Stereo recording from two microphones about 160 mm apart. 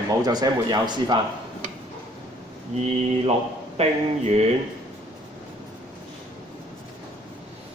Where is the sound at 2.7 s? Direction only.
40° right (ahead or behind).